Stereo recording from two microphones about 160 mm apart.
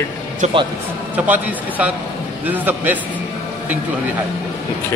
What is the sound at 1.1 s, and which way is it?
A man's voice, 10° right (ahead or behind).